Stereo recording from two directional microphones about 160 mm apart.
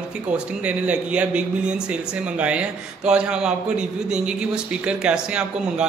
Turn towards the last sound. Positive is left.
turn(degrees=-5)  # may be behind; listen again after turning